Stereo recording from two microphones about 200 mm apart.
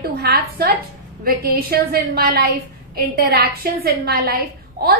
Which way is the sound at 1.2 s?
50° right (ahead or behind).